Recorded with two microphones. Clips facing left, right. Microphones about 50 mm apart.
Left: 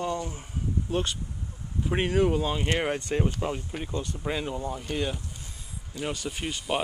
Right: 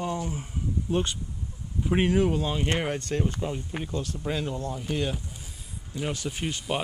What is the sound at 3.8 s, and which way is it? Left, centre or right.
Speech, centre.